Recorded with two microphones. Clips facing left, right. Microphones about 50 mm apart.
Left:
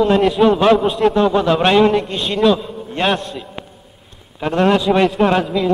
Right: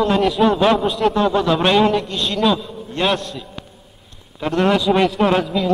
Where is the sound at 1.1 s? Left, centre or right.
Left.